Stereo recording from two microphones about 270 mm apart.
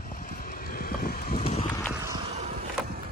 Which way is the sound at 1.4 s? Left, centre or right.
Left.